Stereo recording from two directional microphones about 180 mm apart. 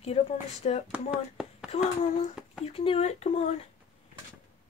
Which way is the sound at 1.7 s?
40° left (ahead or behind).